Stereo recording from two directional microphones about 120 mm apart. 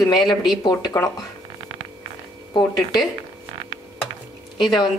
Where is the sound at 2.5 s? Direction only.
40° left (ahead or behind).